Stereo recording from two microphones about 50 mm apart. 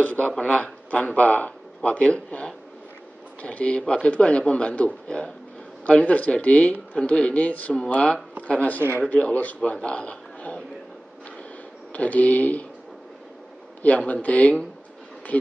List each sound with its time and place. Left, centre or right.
0.0 s a man's voice: left
11.9 s speech: left
13.8 s speech: left